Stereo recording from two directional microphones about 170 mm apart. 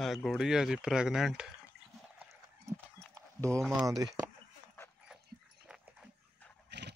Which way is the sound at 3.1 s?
20° right (ahead or behind).